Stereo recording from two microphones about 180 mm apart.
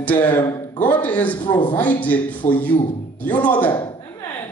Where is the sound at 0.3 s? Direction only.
10° left (ahead or behind).